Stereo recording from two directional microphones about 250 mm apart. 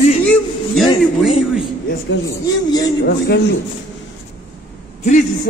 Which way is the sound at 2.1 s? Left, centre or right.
Left.